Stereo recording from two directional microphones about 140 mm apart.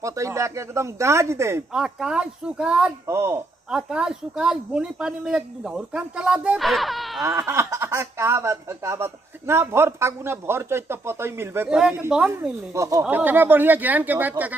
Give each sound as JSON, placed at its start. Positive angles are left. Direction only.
{"t": 0.0, "sound": "speech", "side_deg": -20}
{"t": 1.7, "sound": "speech", "side_deg": -5}
{"t": 3.1, "sound": "speech", "side_deg": -20}
{"t": 3.7, "sound": "speech", "side_deg": -5}
{"t": 7.2, "sound": "speech", "side_deg": -20}